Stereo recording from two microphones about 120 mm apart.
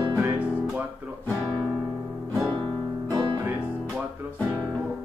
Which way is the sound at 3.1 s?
40° right (ahead or behind).